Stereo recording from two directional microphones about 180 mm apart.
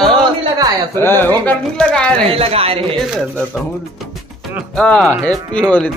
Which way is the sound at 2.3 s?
30° right (ahead or behind).